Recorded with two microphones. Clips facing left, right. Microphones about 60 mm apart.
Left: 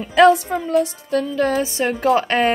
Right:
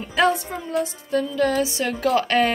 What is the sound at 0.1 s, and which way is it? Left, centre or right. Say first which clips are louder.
Speech: left 8 dB; left.